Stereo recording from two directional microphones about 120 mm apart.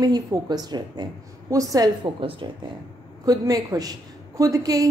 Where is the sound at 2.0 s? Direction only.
45° right (ahead or behind).